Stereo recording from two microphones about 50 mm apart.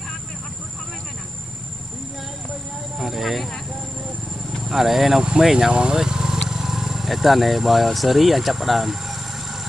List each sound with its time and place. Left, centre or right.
3.0 s speech: centre
4.6 s speech: centre
5.7 s speech: centre
5.9 s vehicle: centre
6.5 s speech: centre